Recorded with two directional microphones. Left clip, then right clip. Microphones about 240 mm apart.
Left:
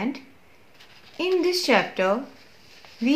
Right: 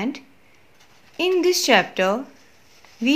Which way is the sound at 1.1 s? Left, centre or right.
Right.